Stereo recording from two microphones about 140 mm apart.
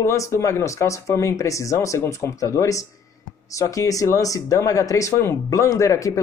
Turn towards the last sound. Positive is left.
turn(degrees=25)  # may be behind; listen again after turning